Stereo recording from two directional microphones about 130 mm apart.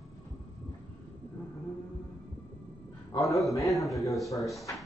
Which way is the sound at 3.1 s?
25° left (ahead or behind).